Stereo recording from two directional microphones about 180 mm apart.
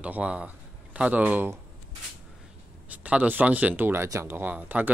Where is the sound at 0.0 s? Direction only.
5° right (ahead or behind).